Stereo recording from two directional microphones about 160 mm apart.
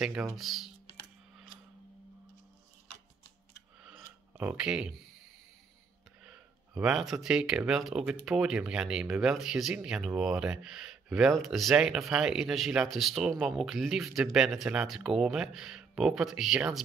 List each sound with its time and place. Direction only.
0.0 s speech: 5° right (ahead or behind)
4.4 s speech: 5° right (ahead or behind)
6.7 s speech: 5° right (ahead or behind)